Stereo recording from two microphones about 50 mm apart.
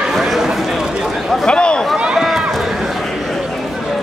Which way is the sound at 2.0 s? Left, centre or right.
Centre.